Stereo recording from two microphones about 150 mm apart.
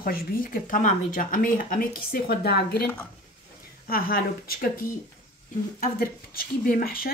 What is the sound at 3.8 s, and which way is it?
Speech, 80° left.